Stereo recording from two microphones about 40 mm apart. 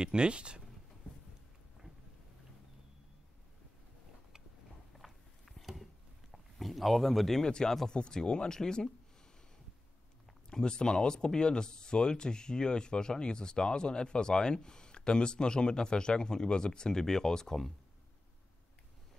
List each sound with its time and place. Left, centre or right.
0.0 s speech: right
4.9 s a sound: centre
6.3 s speech: centre
7.4 s speech: centre
10.5 s speech: centre